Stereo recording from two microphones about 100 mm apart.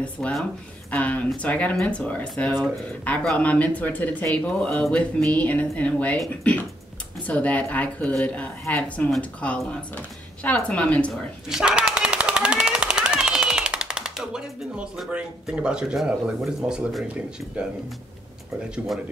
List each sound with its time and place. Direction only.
0.0 s a woman's voice: 5° left (ahead or behind)
7.2 s a woman's voice: 15° left (ahead or behind)
11.4 s machine gun: 10° right (ahead or behind)